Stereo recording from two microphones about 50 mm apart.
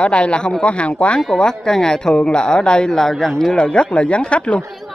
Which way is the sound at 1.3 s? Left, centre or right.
Centre.